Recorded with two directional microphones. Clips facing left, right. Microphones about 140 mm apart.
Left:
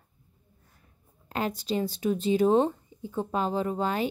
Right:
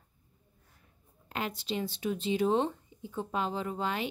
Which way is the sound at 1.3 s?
40° left (ahead or behind).